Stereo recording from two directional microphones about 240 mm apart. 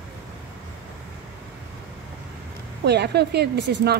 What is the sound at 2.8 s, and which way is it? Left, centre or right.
A woman's voice, right.